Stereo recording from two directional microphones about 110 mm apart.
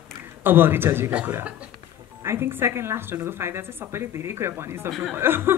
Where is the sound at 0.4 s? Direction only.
20° right (ahead or behind).